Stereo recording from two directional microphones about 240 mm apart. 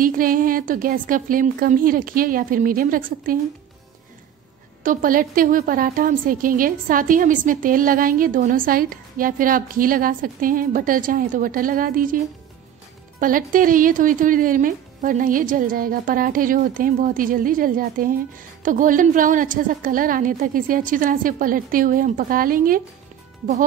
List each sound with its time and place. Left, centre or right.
0.0 s a woman's voice: right
4.8 s a woman's voice: right
13.2 s a woman's voice: right